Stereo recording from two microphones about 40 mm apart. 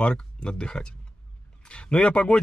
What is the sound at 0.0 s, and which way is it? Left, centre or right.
Speech, left.